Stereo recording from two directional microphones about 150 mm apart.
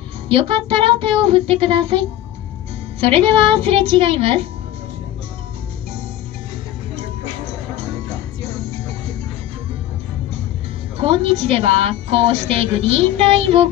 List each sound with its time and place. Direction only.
0.3 s a woman's voice: 35° right (ahead or behind)
11.0 s a woman's voice: 40° right (ahead or behind)